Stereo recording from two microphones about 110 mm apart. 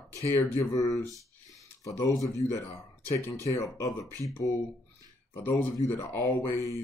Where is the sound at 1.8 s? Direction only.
30° left (ahead or behind).